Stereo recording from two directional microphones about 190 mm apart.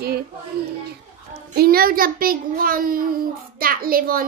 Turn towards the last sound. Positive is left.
turn(degrees=-50)  # may be behind; listen again after turning